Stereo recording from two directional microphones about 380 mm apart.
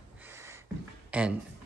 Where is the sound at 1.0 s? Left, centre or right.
Centre.